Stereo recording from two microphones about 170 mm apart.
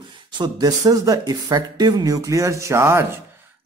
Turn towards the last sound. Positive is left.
turn(degrees=-15)  # may be behind; listen again after turning